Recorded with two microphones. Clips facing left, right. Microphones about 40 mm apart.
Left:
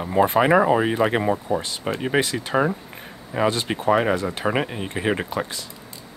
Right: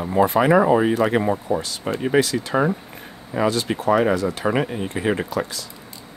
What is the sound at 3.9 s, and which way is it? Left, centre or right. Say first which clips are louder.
Speech: right 1 dB; centre.